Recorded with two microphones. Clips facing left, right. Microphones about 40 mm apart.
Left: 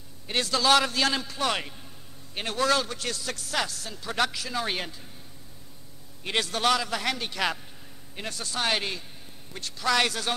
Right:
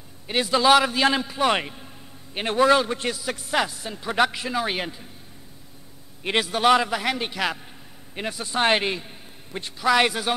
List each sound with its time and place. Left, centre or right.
0.3 s a man's voice: centre
6.4 s a man's voice: centre
8.1 s a man's voice: centre
8.5 s a man's voice: right